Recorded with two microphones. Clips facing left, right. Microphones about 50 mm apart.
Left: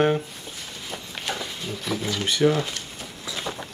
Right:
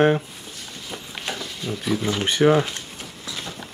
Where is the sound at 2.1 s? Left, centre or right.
Right.